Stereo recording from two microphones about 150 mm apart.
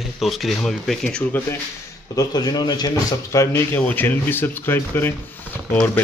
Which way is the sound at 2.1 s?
25° left (ahead or behind).